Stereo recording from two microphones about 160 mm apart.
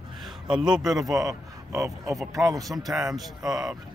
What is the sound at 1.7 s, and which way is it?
Speech, 20° right (ahead or behind).